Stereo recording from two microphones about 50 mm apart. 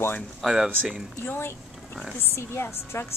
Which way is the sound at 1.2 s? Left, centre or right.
Left.